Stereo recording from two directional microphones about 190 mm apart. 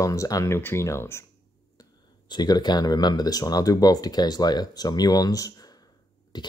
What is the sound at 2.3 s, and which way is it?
Speech, 20° left (ahead or behind).